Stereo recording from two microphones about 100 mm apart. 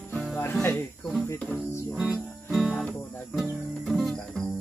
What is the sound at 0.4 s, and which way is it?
Music, 25° left (ahead or behind).